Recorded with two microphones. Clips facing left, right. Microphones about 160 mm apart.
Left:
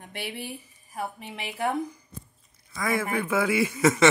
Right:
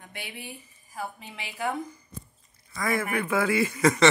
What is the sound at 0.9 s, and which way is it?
A woman's voice, 25° left (ahead or behind).